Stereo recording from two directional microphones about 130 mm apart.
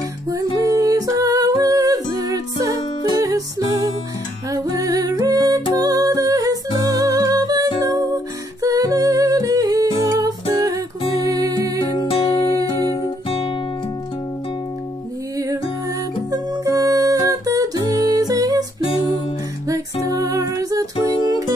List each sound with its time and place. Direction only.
0.7 s music: 25° right (ahead or behind)
8.6 s humming: 25° right (ahead or behind)
12.1 s music: 45° left (ahead or behind)
15.3 s music: 25° right (ahead or behind)
19.7 s music: 25° right (ahead or behind)